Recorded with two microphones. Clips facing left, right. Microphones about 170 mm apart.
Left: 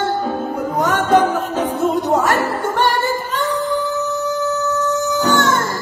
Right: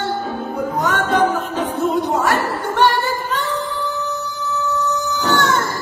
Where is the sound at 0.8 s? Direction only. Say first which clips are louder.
Left 3 dB; 45° left (ahead or behind).